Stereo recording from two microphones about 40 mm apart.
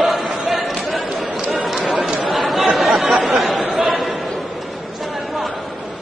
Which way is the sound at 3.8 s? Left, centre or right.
Centre.